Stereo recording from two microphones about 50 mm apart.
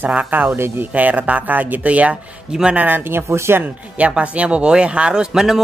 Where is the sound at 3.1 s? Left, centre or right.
Right.